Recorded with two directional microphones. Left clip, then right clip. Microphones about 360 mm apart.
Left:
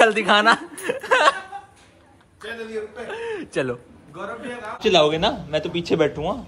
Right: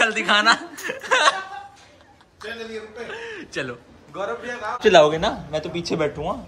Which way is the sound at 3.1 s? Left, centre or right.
Centre.